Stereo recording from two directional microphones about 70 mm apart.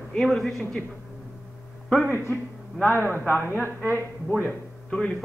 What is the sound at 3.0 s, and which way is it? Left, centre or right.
Speech, left.